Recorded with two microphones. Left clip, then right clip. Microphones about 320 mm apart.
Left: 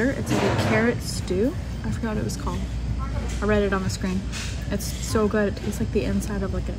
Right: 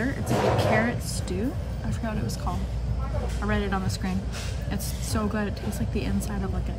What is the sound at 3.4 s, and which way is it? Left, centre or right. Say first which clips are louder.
Speech: left 7 dB; centre.